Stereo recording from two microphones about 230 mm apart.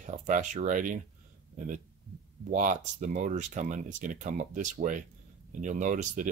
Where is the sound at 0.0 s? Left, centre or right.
Right.